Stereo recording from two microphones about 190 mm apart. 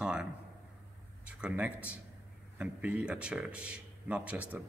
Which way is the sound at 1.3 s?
5° right (ahead or behind).